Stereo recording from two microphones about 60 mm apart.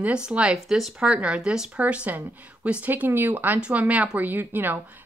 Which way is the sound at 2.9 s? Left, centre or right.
Right.